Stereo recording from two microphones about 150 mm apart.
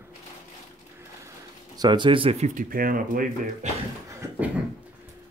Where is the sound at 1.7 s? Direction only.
30° right (ahead or behind); by 3.6 s 65° right (ahead or behind).